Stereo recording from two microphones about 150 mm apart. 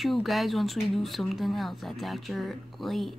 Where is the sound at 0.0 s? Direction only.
Centre (ahead or behind).